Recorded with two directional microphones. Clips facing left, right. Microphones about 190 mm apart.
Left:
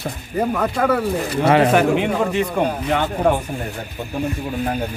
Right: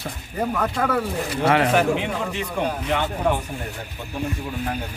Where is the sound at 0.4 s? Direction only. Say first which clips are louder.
Left 4 dB; 10° left (ahead or behind).